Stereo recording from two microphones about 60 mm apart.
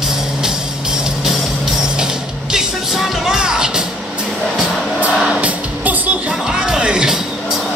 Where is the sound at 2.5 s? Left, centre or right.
Centre.